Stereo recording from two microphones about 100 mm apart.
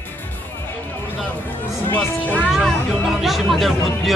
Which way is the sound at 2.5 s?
Centre (ahead or behind).